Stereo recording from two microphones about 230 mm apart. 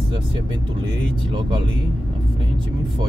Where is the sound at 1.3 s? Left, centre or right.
Right.